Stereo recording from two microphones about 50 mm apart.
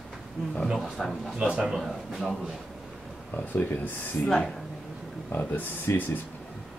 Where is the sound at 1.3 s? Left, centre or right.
Right.